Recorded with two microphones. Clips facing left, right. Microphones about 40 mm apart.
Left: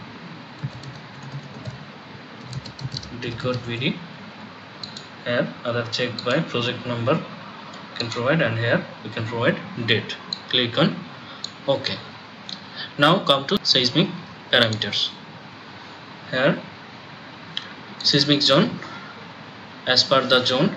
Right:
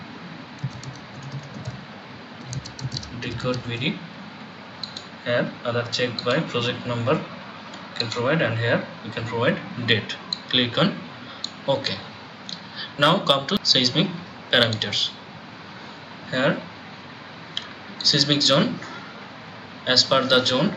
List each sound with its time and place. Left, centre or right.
3.4 s speech: centre
5.2 s speech: centre
16.3 s speech: centre
17.6 s a sound: centre
19.8 s speech: centre